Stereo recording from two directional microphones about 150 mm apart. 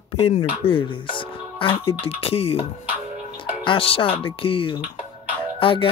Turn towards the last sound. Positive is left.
turn(degrees=35)  # may be behind; listen again after turning